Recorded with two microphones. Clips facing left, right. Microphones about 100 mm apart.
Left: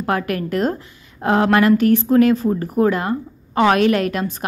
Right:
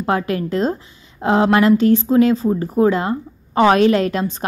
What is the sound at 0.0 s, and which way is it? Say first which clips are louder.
A woman's voice: right 2 dB; 25° right (ahead or behind).